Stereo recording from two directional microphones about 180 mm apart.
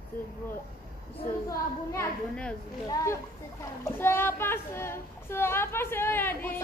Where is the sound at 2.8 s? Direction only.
20° left (ahead or behind).